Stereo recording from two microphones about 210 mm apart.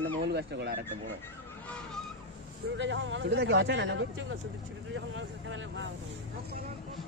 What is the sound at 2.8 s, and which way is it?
Speech, 60° right (ahead or behind).